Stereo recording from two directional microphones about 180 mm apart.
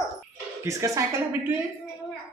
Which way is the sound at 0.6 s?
20° right (ahead or behind).